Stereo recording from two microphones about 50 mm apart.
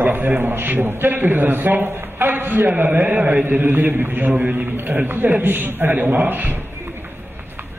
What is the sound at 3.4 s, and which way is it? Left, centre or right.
A man's voice, right.